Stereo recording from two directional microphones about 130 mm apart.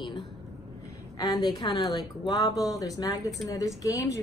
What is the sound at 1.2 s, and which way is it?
Speech, 30° left (ahead or behind).